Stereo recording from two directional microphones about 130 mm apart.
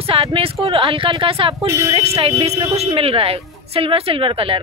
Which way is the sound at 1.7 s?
20° right (ahead or behind).